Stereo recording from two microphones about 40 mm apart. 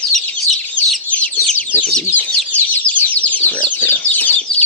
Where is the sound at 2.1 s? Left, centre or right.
Left.